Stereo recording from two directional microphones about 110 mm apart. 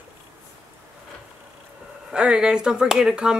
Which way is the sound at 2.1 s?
10° right (ahead or behind).